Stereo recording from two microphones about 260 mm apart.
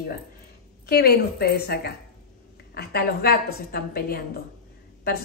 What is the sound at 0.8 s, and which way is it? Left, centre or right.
A woman's voice, left.